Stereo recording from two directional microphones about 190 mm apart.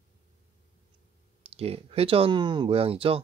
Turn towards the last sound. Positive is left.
turn(degrees=-30)  # may be behind; listen again after turning